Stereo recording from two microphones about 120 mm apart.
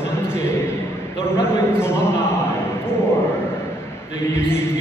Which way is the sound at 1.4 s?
20° left (ahead or behind).